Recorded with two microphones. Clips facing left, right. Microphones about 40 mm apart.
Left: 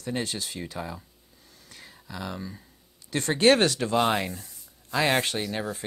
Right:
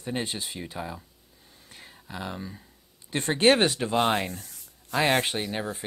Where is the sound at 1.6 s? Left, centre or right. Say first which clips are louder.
Even; right.